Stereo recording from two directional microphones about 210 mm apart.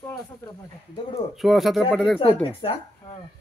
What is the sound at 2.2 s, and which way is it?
Speech, 25° left (ahead or behind).